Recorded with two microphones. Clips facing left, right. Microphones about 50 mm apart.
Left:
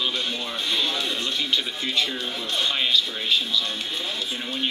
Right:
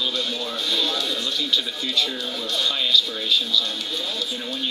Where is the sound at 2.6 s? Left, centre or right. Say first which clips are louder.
Right 1 dB; left.